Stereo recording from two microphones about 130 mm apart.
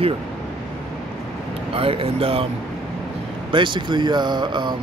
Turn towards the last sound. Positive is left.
turn(degrees=-35)  # may be behind; listen again after turning